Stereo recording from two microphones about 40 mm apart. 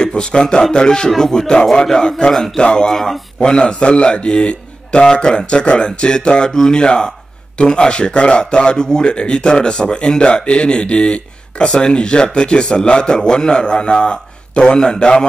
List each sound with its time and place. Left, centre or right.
0.0 s speech: left
2.9 s speech: centre
3.3 s speech: left